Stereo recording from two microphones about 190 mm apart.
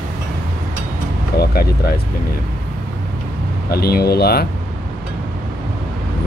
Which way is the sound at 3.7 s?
55° left (ahead or behind).